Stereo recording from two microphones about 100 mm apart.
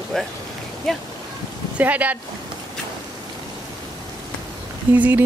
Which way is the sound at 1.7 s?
15° right (ahead or behind).